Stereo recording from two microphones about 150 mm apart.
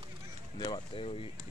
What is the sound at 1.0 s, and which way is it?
Speech, 40° left (ahead or behind).